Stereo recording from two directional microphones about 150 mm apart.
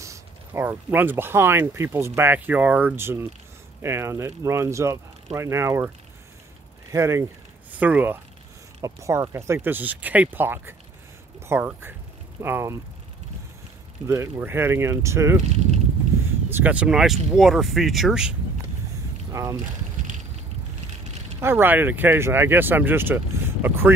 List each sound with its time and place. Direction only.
0.5 s speech: 15° right (ahead or behind)
6.9 s speech: 20° right (ahead or behind)
14.0 s speech: 20° right (ahead or behind)
16.4 s speech: 10° right (ahead or behind)
19.3 s speech: 20° right (ahead or behind)
21.4 s speech: 15° right (ahead or behind)